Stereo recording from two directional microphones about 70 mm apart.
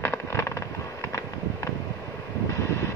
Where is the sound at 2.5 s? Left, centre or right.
Left.